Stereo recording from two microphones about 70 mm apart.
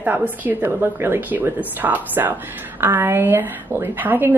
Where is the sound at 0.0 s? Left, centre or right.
Right.